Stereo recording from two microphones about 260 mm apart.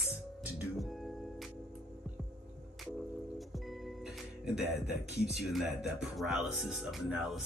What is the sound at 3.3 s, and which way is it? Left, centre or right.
Music, centre.